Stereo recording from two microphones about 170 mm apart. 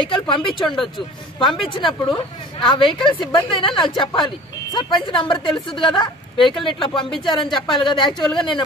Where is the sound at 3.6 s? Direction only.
30° left (ahead or behind).